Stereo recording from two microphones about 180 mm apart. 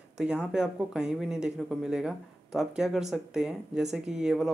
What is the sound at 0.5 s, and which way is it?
Speech, 5° right (ahead or behind).